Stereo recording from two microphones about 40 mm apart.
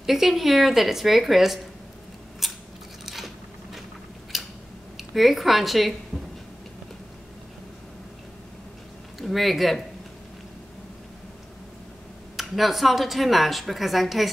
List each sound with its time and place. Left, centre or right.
0.0 s speech: centre
2.4 s scissors: centre
4.3 s scissors: centre
4.9 s speech: centre
9.2 s speech: centre
12.4 s speech: centre